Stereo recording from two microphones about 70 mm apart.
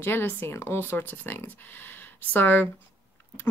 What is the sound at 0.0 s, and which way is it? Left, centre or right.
Speech, left.